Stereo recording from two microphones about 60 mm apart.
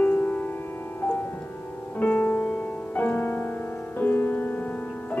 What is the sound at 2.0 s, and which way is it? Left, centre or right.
Music, left.